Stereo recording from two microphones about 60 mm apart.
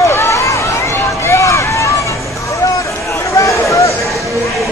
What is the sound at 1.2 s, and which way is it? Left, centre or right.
Run, left.